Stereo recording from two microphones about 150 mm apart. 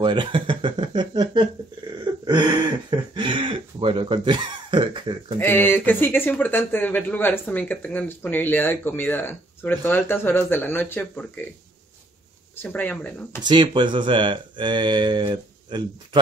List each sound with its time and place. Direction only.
0.0 s speech: 30° right (ahead or behind)
2.2 s a sound: 30° right (ahead or behind)
3.2 s cough: 35° right (ahead or behind)
5.4 s speech: 15° left (ahead or behind)
12.6 s speech: 10° left (ahead or behind)
13.4 s speech: 30° right (ahead or behind)